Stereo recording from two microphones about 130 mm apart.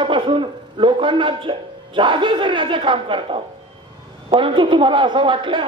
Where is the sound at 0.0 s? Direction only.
40° right (ahead or behind).